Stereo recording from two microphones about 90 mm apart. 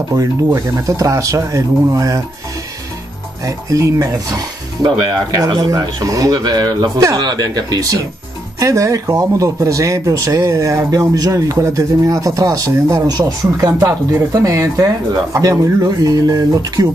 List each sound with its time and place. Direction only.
0.1 s speech: 40° right (ahead or behind)
3.4 s speech: 40° right (ahead or behind)
13.1 s speech: 45° right (ahead or behind)